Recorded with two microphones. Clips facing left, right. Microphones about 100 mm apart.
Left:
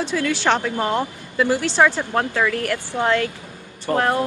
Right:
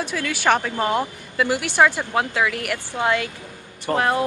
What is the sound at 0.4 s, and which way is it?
A woman's voice, 10° right (ahead or behind).